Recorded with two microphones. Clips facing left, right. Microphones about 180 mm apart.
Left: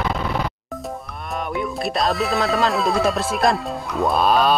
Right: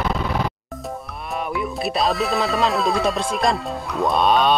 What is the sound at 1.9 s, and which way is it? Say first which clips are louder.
Speech: right 1 dB; centre (ahead or behind).